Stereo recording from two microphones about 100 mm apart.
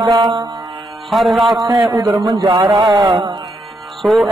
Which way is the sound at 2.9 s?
40° right (ahead or behind).